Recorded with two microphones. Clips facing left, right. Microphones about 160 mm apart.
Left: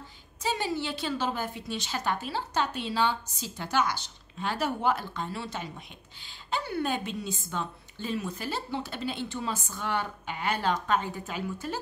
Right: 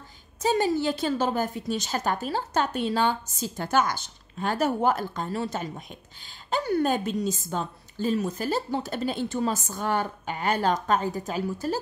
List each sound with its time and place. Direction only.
0.4 s a woman's voice: 45° right (ahead or behind)